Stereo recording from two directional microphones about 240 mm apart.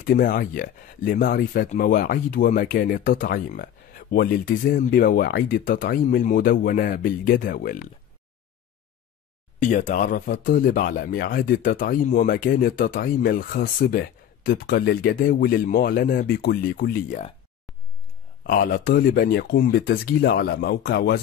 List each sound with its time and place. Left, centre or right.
0.0 s speech: left
9.6 s speech: left
18.4 s speech: left